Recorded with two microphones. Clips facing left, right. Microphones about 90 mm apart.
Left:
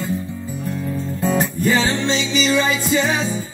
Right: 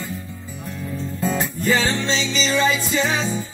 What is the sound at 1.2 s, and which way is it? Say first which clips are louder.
Music: left 3 dB; 20° left (ahead or behind).